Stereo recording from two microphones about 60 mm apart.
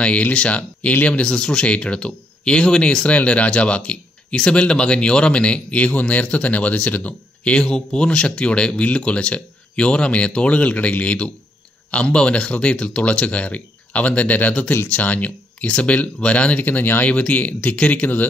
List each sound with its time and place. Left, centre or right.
0.0 s speech: centre
7.6 s speech: centre; by 17.1 s left
17.1 s speech: left